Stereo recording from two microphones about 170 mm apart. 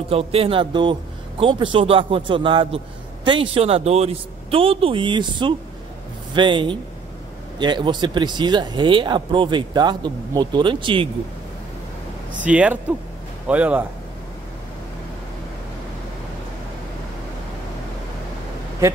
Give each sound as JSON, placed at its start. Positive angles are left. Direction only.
{"t": 0.1, "sound": "a man's voice", "side_deg": -35}
{"t": 12.4, "sound": "speech", "side_deg": -5}